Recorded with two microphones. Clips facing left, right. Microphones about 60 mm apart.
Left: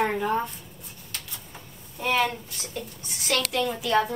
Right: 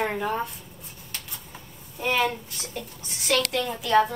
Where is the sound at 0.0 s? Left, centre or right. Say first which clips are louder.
Left 2 dB; centre.